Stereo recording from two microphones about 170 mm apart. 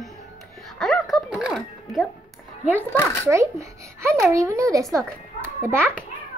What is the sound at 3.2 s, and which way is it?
A child's voice, 15° right (ahead or behind).